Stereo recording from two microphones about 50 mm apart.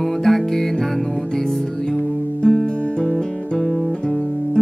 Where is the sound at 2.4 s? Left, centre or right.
Left.